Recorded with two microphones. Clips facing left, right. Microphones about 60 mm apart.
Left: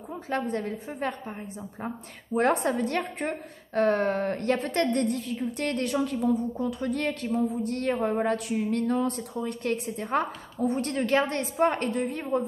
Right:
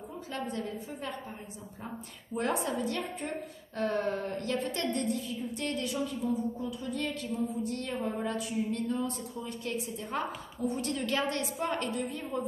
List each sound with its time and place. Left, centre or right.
0.3 s a woman's voice: left
2.3 s a woman's voice: left
7.1 s a woman's voice: left